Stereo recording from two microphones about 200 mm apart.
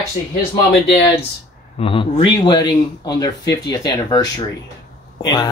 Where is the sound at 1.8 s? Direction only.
25° left (ahead or behind).